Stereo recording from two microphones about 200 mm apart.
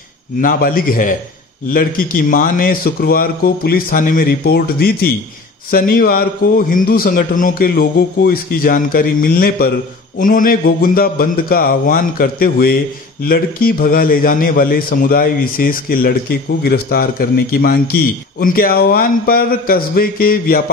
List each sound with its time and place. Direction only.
0.4 s a man's voice: 45° left (ahead or behind)